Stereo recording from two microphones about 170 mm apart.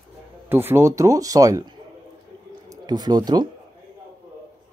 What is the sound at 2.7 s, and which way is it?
Speech, 25° right (ahead or behind).